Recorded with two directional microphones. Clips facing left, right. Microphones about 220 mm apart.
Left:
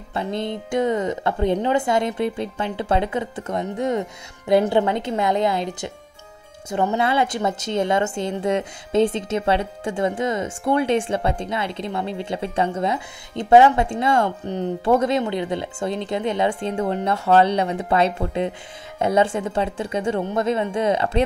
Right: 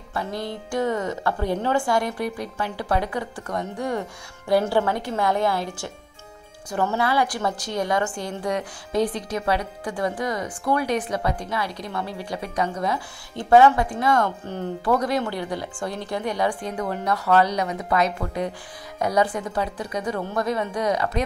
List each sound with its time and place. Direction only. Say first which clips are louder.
0.1 s a woman's voice: left 4 dB; 20° left (ahead or behind)